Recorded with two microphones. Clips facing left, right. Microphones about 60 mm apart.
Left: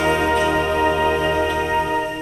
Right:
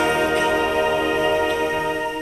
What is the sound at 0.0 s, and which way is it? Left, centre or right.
Music, centre.